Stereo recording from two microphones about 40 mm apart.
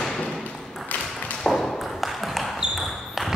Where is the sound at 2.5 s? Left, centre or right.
Centre.